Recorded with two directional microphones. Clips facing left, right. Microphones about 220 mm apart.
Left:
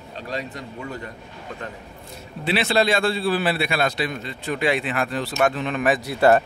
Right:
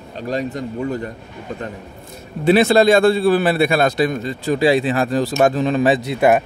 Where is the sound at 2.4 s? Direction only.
45° right (ahead or behind).